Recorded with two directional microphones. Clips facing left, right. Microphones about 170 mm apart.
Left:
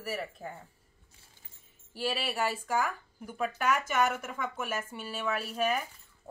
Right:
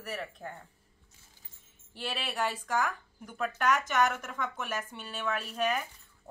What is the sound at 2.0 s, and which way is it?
Speech, 5° left (ahead or behind).